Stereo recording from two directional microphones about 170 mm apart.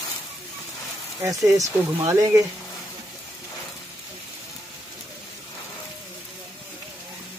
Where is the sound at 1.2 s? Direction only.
20° right (ahead or behind).